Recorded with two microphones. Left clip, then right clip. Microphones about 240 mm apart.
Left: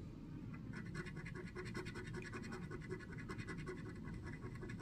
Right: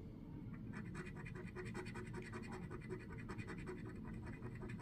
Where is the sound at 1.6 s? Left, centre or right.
Centre.